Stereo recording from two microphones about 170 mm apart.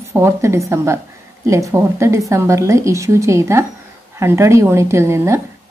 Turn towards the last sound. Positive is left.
turn(degrees=-15)  # may be behind; listen again after turning